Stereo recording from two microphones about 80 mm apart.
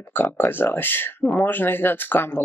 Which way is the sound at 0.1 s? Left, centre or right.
Left.